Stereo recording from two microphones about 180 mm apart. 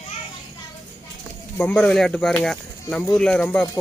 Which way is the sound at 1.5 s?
10° left (ahead or behind).